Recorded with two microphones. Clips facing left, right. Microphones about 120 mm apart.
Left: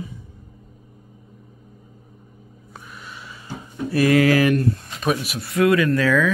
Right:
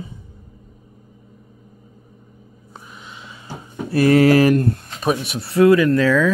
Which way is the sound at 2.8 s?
20° right (ahead or behind).